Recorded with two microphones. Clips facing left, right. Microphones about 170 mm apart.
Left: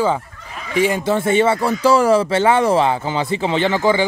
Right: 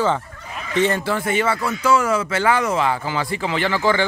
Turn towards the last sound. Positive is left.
turn(degrees=15)  # may be behind; listen again after turning